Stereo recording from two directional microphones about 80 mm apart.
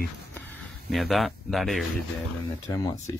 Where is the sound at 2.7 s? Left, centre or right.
Left.